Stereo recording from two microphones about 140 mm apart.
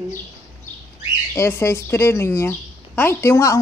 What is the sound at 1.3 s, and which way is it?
Speech, 20° left (ahead or behind).